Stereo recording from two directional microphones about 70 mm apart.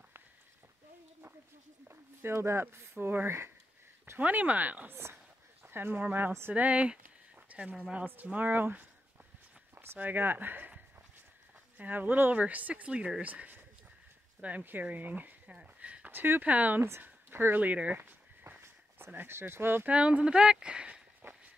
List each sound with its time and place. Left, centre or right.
1.9 s speech: right
4.2 s speech: right
7.4 s a sound: centre
7.9 s speech: right
9.9 s speech: right
11.8 s speech: right
16.1 s speech: right
19.9 s speech: centre